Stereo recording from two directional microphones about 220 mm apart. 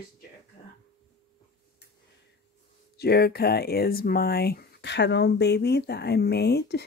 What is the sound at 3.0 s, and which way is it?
Speech, 45° left (ahead or behind).